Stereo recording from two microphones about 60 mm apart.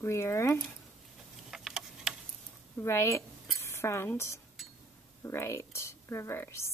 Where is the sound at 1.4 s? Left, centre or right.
Centre.